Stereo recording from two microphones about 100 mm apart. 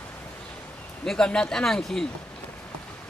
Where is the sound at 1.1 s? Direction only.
10° left (ahead or behind).